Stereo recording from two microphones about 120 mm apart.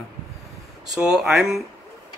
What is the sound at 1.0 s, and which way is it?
Speech, 5° right (ahead or behind).